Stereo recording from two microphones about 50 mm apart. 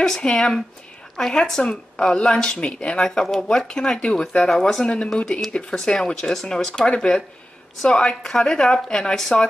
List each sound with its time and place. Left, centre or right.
0.2 s speech: centre
8.2 s speech: centre